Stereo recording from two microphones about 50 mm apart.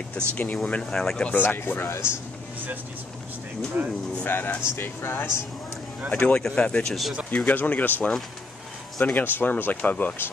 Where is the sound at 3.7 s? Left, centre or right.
Right.